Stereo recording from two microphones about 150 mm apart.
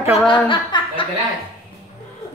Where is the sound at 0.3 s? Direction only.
35° left (ahead or behind).